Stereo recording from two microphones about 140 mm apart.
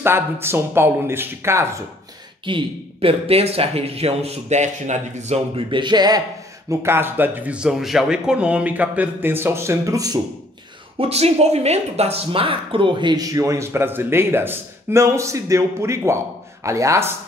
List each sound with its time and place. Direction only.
0.0 s speech: 15° right (ahead or behind)
2.4 s speech: 40° right (ahead or behind); by 5.4 s 55° right (ahead or behind)
5.7 s speech: 35° right (ahead or behind)
6.7 s speech: 20° right (ahead or behind)
11.0 s speech: 45° right (ahead or behind); by 17.1 s 20° right (ahead or behind)